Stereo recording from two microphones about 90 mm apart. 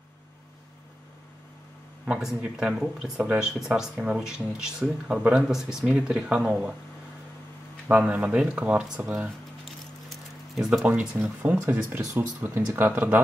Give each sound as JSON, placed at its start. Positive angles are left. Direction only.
{"t": 2.0, "sound": "speech", "side_deg": -10}
{"t": 7.9, "sound": "speech", "side_deg": -15}
{"t": 10.0, "sound": "a sound", "side_deg": -5}
{"t": 11.6, "sound": "speech", "side_deg": -25}